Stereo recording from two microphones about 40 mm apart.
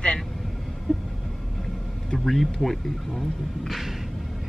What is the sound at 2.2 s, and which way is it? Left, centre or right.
Speech, centre.